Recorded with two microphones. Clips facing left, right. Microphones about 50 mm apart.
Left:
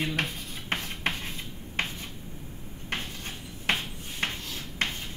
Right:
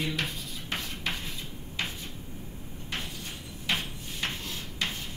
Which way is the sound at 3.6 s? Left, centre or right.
Left.